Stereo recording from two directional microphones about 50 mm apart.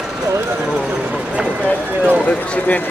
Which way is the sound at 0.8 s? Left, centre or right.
Right.